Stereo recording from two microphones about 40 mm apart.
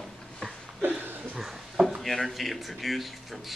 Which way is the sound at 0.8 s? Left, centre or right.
Right.